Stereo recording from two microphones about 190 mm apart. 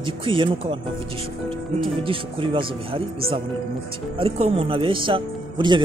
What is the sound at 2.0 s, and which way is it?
Speech, 30° right (ahead or behind).